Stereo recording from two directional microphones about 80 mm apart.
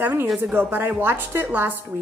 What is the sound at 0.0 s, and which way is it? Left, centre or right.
A woman's voice, right.